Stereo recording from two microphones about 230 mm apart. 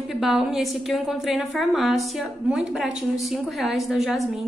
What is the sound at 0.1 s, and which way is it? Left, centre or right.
A woman's voice, centre.